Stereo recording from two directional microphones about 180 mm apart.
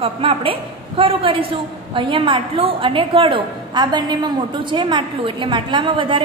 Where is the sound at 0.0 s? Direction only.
30° right (ahead or behind).